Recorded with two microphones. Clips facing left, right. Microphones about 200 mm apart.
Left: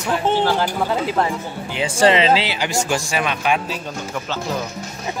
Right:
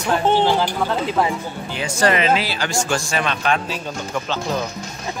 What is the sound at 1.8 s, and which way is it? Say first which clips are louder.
Speech: left 3 dB; 25° left (ahead or behind).